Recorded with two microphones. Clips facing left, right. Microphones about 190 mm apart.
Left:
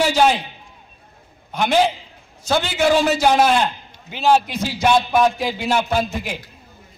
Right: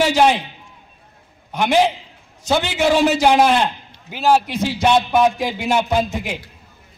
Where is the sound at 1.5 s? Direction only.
10° right (ahead or behind).